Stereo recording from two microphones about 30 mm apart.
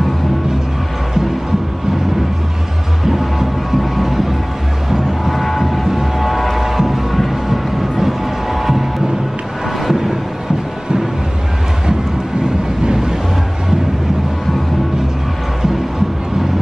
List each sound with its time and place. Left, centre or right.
3.1 s music: centre
5.3 s vehicle: centre
5.6 s vehicle: centre
6.1 s vehicle: centre
6.6 s music: centre